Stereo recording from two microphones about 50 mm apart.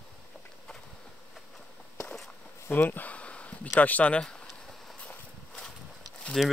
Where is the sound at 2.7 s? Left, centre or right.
Left.